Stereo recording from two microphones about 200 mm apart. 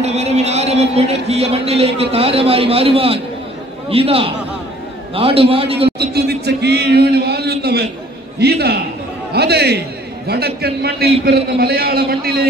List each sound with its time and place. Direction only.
0.0 s music: 35° right (ahead or behind)
1.3 s a man's voice: 30° right (ahead or behind)
5.9 s a man's voice: 55° right (ahead or behind)